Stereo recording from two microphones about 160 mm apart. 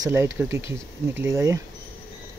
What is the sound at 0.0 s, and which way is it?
Speech, 15° right (ahead or behind).